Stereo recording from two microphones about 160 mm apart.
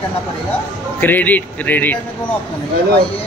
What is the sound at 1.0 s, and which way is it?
Speech, 10° left (ahead or behind).